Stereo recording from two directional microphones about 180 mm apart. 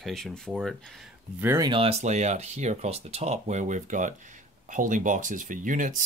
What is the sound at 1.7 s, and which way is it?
Speech, 35° right (ahead or behind).